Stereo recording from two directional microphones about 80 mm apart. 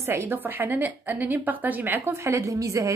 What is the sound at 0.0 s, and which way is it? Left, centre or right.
A woman's voice, right.